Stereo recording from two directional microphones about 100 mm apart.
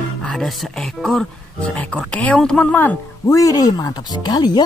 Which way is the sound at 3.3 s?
35° left (ahead or behind).